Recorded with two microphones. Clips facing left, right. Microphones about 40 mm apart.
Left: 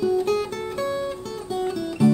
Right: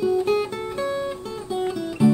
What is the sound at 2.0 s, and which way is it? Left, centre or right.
Music, centre.